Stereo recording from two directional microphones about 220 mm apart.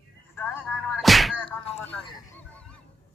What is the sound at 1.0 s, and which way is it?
Music, centre (ahead or behind).